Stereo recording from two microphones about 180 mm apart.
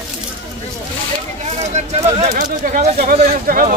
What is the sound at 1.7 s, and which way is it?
Speech, 40° right (ahead or behind).